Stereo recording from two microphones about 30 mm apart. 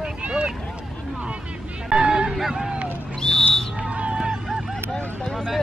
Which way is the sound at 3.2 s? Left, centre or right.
Left.